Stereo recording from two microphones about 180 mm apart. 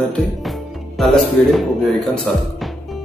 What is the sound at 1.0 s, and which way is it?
Speech, centre (ahead or behind).